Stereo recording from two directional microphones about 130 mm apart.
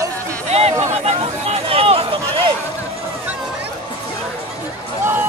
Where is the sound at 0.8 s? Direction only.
55° right (ahead or behind).